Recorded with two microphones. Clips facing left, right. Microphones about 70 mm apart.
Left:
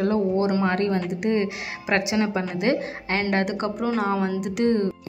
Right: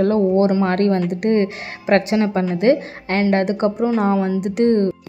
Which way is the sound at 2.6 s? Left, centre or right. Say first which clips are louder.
Right 8 dB; centre.